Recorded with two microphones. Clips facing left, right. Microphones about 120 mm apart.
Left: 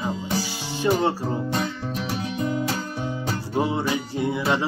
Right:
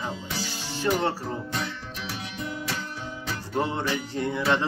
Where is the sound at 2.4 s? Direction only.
35° left (ahead or behind).